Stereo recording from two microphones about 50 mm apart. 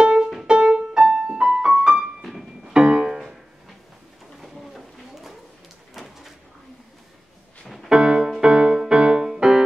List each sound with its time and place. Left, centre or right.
0.2 s music: centre
0.5 s music: right
2.2 s piano: centre
2.7 s music: centre
4.4 s a sound: centre
7.6 s music: centre
7.9 s music: centre